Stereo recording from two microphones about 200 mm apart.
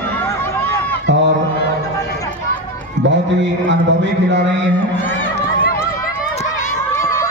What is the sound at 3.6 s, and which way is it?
Speech, 65° right (ahead or behind).